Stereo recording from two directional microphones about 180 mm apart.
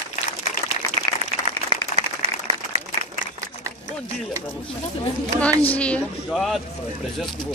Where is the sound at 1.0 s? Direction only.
35° right (ahead or behind).